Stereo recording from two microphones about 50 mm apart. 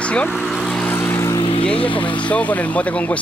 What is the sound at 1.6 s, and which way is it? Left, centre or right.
Speech, left.